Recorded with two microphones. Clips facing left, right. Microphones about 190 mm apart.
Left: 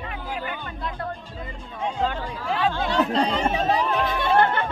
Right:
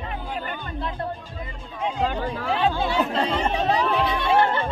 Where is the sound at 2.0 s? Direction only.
15° right (ahead or behind).